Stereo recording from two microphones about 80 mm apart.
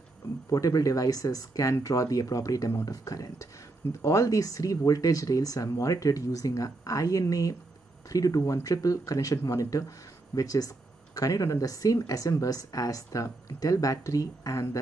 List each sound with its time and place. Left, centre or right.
0.5 s speech: left